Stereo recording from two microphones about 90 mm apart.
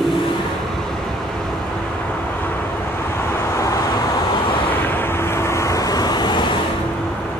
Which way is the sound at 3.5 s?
35° left (ahead or behind).